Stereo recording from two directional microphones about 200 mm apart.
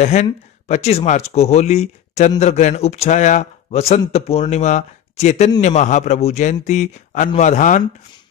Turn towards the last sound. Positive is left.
turn(degrees=40)  # may be behind; listen again after turning